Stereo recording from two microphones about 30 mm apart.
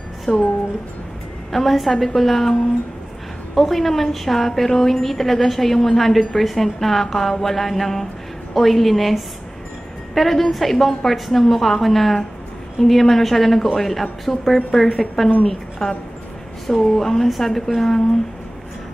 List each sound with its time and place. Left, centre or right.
0.3 s speech: left
1.5 s a woman's voice: centre
3.5 s a woman's voice: centre
10.1 s a woman's voice: centre